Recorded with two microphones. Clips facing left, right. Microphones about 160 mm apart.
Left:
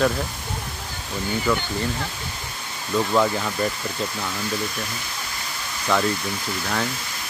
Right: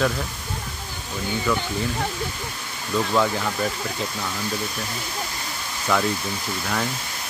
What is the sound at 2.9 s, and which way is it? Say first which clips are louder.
Speech: left 1 dB; 5° left (ahead or behind).